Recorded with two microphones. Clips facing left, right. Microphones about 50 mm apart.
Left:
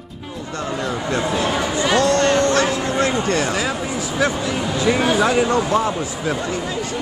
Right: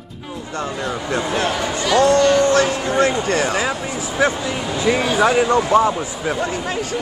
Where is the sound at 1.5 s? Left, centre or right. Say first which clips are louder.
Left 1 dB; centre.